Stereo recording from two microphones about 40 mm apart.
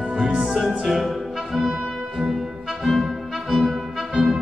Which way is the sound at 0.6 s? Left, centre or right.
Centre.